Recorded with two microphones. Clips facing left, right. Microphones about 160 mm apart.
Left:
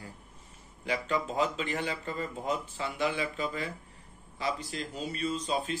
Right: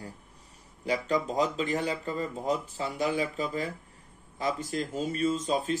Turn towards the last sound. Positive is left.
turn(degrees=-45)  # may be behind; listen again after turning